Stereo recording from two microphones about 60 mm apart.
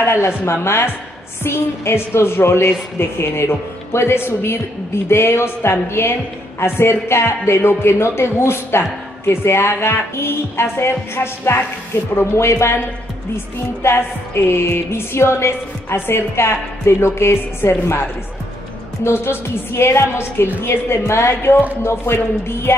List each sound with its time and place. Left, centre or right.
0.0 s a man's voice: left
13.8 s a man's voice: left
19.0 s a man's voice: left